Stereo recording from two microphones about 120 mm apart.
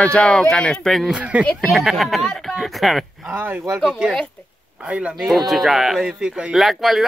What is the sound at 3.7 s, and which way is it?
Speech, 5° right (ahead or behind).